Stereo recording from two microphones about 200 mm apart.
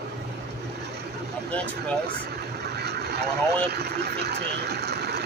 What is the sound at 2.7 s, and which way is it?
Vehicle, 55° right (ahead or behind).